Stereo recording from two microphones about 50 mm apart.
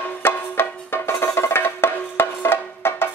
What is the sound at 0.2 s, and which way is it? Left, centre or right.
Music, left.